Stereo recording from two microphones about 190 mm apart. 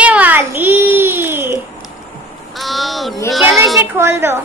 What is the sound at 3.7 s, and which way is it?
Speech, 15° right (ahead or behind).